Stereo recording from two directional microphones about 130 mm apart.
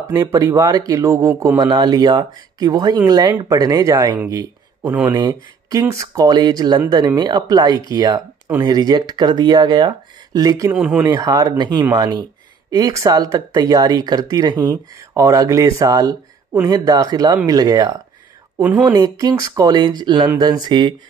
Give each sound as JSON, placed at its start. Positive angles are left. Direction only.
{"t": 0.1, "sound": "speech", "side_deg": -25}
{"t": 4.8, "sound": "speech", "side_deg": -10}
{"t": 5.1, "sound": "speech", "side_deg": -30}
{"t": 10.7, "sound": "speech", "side_deg": -10}
{"t": 11.1, "sound": "speech", "side_deg": -30}
{"t": 18.6, "sound": "speech", "side_deg": -10}
{"t": 18.9, "sound": "speech", "side_deg": -30}